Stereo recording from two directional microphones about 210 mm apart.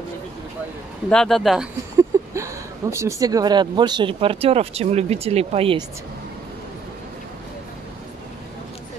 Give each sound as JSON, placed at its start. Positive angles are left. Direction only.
{"t": 1.1, "sound": "speech", "side_deg": 0}
{"t": 2.0, "sound": "speech", "side_deg": -15}